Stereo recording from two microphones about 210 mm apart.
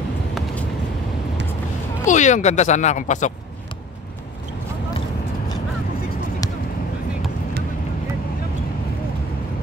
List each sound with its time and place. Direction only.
2.0 s speech: 35° left (ahead or behind)